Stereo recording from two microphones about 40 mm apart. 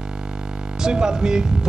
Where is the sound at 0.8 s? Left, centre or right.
Centre.